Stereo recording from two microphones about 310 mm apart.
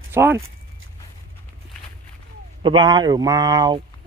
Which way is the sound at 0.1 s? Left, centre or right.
Centre.